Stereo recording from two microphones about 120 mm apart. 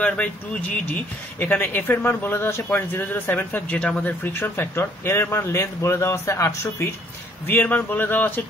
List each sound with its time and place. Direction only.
0.0 s speech: 10° left (ahead or behind)